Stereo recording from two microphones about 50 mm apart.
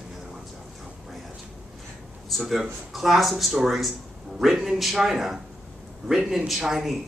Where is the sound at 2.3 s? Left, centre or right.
Centre.